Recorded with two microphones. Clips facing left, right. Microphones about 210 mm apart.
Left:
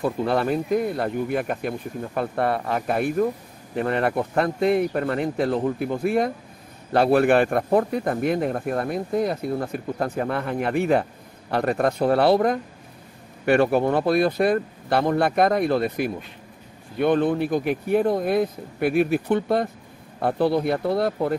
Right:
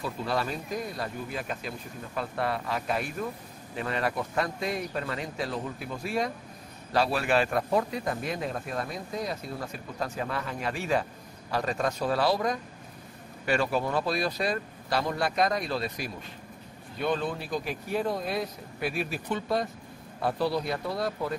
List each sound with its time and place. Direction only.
0.0 s a man's voice: 55° left (ahead or behind)